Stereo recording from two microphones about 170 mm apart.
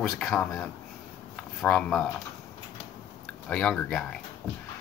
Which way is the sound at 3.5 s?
5° left (ahead or behind).